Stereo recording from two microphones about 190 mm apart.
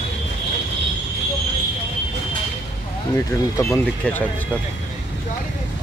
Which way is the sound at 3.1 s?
15° left (ahead or behind).